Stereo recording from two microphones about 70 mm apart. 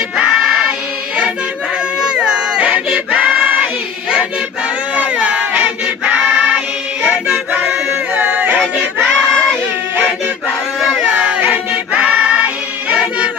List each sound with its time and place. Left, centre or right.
0.1 s choir: centre
4.9 s choir: centre
8.1 s a sound: right
9.0 s choir: centre
11.1 s choir: centre
12.9 s music: centre